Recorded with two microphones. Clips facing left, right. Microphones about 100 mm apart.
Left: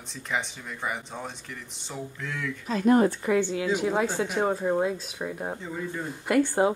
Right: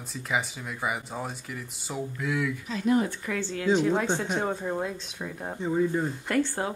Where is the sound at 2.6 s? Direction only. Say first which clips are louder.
Left 6 dB; 45° left (ahead or behind).